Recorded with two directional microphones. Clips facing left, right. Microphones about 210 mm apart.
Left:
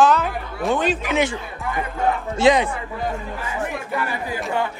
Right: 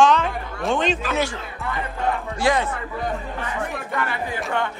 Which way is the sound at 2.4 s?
15° left (ahead or behind).